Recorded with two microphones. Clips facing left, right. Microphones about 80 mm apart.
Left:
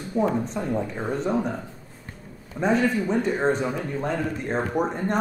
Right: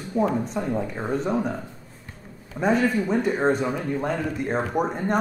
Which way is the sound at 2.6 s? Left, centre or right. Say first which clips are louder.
Right 1 dB; centre.